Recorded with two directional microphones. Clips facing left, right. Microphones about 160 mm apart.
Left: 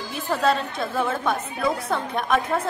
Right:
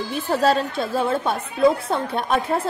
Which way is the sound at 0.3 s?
35° right (ahead or behind).